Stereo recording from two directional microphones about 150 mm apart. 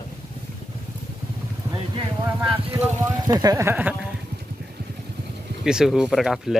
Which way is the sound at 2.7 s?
20° right (ahead or behind).